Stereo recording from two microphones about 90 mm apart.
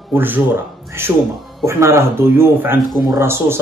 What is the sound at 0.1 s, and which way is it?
Speech, 20° right (ahead or behind).